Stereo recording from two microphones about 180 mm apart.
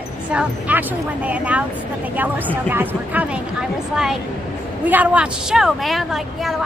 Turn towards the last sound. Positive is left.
turn(degrees=0)  # may be behind; listen again after turning